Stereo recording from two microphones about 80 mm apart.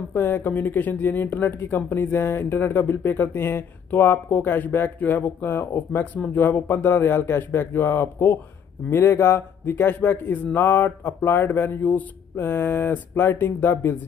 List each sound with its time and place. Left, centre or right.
0.1 s speech: left